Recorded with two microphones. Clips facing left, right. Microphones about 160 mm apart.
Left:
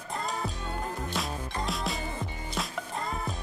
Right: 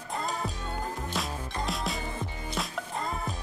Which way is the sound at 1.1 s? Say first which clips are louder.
Even; centre (ahead or behind).